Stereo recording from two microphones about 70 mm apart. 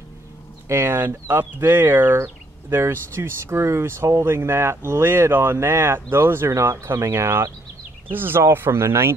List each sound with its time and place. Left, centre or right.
0.7 s speech: right